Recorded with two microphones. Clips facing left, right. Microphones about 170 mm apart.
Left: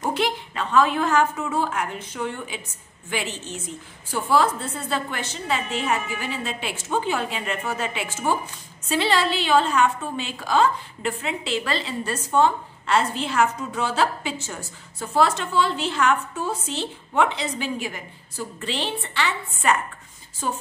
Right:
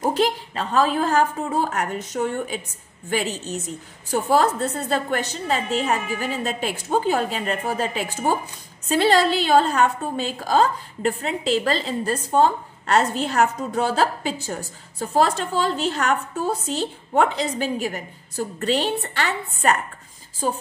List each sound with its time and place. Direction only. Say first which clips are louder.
0.0 s a woman's voice: right 4 dB; 35° right (ahead or behind)